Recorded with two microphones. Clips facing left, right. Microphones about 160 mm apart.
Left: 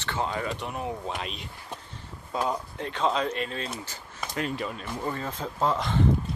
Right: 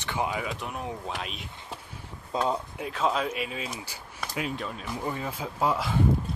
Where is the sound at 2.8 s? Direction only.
5° right (ahead or behind).